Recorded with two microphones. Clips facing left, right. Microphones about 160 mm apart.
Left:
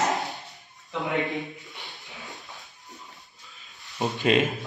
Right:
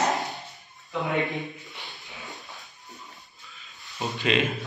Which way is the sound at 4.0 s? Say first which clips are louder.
Left 3 dB; 45° left (ahead or behind).